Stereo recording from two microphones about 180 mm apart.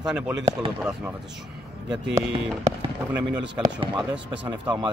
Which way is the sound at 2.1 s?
15° right (ahead or behind).